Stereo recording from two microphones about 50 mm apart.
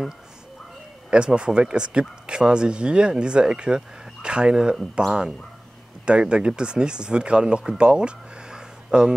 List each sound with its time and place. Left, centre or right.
1.1 s speech: centre